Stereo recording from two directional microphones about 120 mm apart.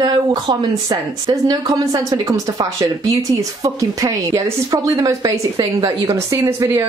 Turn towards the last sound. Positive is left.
turn(degrees=-25)  # may be behind; listen again after turning